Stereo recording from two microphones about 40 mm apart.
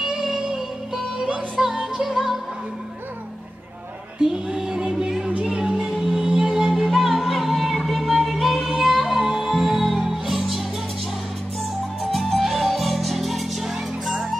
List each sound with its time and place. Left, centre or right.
0.0 s music: centre
4.2 s music: centre
5.8 s music: centre
12.0 s music: centre